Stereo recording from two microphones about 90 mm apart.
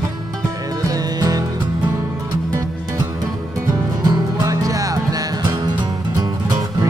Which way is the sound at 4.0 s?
45° right (ahead or behind).